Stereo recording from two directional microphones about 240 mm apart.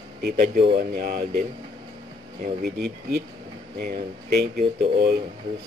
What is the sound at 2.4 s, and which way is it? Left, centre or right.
Speech, right.